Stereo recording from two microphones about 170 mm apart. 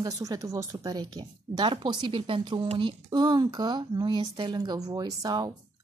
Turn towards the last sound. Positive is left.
turn(degrees=-20)  # may be behind; listen again after turning